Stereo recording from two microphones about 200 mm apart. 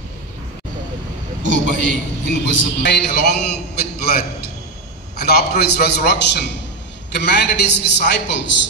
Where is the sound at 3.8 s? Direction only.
50° left (ahead or behind).